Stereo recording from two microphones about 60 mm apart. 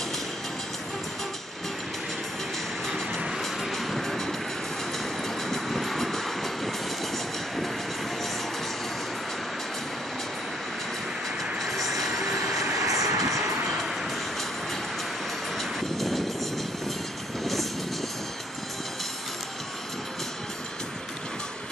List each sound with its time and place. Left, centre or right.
3.4 s music: centre
5.5 s vehicle: centre
11.6 s vehicle: centre
12.5 s vehicle: right
15.5 s vehicle: centre
17.4 s vehicle: centre